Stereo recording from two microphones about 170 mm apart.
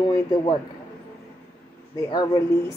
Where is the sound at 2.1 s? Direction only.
25° left (ahead or behind).